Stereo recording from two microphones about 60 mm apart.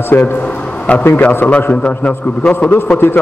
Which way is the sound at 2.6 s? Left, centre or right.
Left.